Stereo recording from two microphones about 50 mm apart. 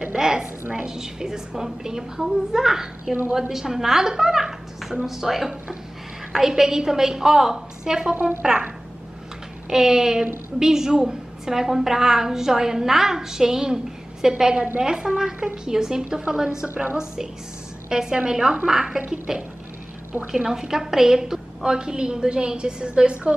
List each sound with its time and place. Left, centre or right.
0.2 s a woman's voice: centre
8.1 s a woman's voice: right
8.4 s a woman's voice: centre
9.7 s a woman's voice: centre
17.8 s a woman's voice: centre